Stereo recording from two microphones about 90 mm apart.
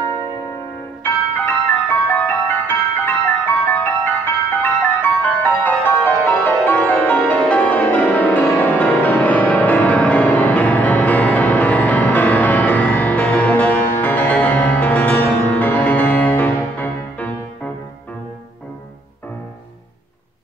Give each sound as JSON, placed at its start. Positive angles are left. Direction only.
{"t": 1.0, "sound": "music", "side_deg": 25}